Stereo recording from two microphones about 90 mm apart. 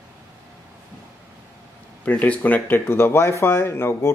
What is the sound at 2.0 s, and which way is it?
Speech, 15° left (ahead or behind).